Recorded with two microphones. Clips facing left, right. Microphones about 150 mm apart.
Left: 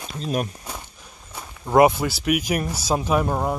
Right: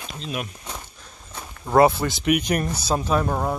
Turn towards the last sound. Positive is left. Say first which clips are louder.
# left 1 dB
turn(degrees=10)  # may be behind; listen again after turning